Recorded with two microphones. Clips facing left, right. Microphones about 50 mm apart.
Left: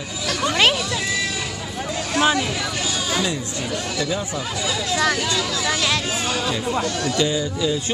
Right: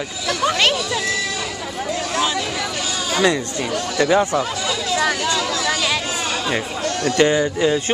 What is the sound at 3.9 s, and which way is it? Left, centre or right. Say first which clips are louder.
Speech: right 12 dB; right.